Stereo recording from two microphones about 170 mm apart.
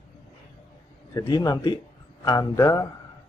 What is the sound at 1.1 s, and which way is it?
A man's voice, 25° left (ahead or behind).